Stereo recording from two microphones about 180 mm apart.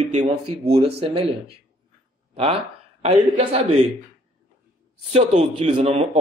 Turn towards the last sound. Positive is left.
turn(degrees=-35)  # may be behind; listen again after turning